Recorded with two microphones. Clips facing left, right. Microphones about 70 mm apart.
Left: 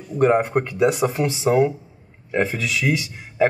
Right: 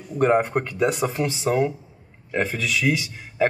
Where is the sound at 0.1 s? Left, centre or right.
Centre.